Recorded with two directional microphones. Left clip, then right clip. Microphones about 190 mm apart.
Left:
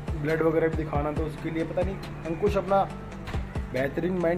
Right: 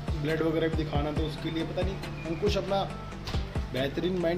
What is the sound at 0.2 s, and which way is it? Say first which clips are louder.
Speech: left 4 dB; 15° right (ahead or behind).